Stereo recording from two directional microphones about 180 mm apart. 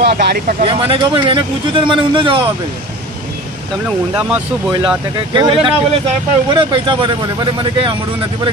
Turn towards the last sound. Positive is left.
turn(degrees=-25)  # may be behind; listen again after turning